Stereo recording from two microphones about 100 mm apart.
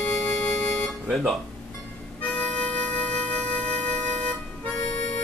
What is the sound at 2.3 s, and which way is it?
Music, 10° left (ahead or behind).